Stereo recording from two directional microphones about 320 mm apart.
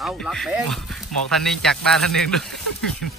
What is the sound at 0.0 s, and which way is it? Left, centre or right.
Speech, centre.